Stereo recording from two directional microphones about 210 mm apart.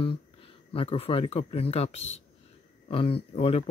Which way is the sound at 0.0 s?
25° left (ahead or behind).